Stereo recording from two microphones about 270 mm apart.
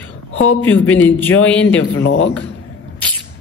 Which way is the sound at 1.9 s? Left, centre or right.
Left.